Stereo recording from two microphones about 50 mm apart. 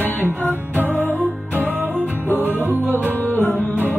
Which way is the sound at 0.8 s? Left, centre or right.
Right.